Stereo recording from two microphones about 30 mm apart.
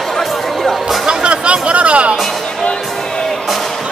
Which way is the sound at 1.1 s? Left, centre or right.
Right.